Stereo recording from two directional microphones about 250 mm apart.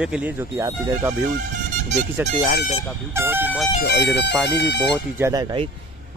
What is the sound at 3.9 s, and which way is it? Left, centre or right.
Speech, left.